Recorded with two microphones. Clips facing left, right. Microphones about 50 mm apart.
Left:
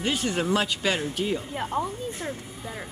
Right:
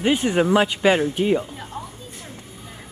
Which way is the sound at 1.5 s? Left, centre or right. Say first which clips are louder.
Left 6 dB; left.